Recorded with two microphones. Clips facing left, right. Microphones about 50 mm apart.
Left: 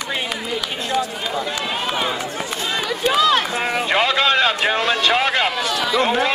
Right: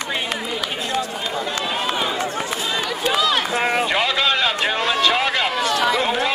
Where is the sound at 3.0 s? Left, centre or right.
Centre.